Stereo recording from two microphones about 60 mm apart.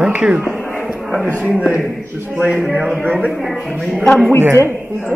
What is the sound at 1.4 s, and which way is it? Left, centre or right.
Speech, centre.